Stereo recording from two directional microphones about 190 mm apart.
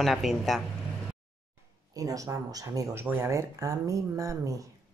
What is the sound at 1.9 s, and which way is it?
Speech, 15° right (ahead or behind).